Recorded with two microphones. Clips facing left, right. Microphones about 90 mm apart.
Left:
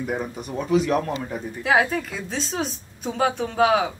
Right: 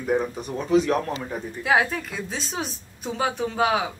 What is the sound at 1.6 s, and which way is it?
Speech, centre (ahead or behind).